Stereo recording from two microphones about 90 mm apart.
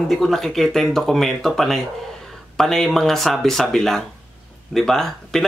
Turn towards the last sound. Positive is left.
turn(degrees=5)  # may be behind; listen again after turning